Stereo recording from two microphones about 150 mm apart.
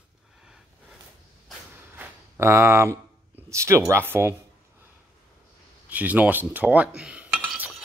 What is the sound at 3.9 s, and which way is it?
Speech, 15° right (ahead or behind).